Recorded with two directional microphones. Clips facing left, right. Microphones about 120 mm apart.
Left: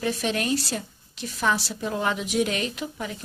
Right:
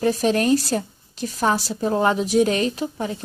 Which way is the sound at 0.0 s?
40° right (ahead or behind).